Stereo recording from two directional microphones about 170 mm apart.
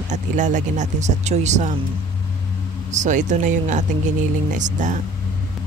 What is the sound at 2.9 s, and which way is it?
Speech, 45° right (ahead or behind).